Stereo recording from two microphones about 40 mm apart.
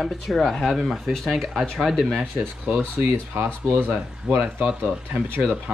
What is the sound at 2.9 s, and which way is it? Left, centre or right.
Speech, right.